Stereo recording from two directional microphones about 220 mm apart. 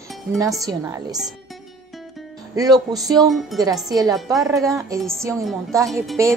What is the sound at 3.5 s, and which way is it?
Speech, centre (ahead or behind).